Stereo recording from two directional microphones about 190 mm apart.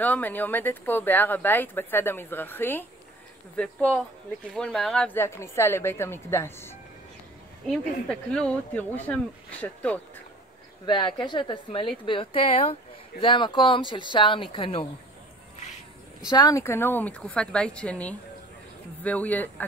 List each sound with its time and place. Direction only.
0.0 s speech: 10° left (ahead or behind)
11.1 s speech: 25° left (ahead or behind)
16.3 s speech: 20° left (ahead or behind)